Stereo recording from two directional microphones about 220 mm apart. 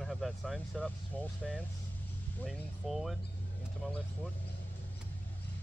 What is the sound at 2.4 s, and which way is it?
Speech, centre (ahead or behind).